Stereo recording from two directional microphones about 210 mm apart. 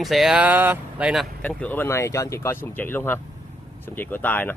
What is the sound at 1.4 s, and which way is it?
Speech, 5° left (ahead or behind).